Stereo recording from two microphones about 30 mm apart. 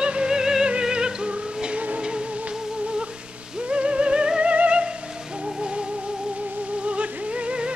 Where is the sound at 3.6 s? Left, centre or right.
Right.